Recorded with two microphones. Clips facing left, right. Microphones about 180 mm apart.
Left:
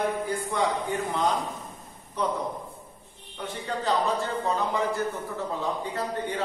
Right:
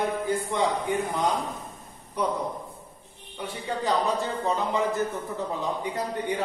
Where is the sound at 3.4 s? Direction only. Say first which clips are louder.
Right 1 dB; 15° right (ahead or behind).